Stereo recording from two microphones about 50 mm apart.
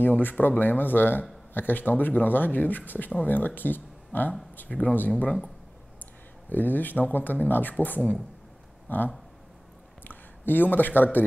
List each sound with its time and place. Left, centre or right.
0.0 s speech: left
6.5 s speech: left